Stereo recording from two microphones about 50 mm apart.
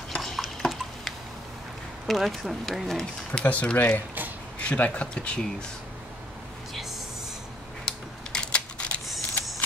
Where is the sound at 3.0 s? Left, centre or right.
Centre.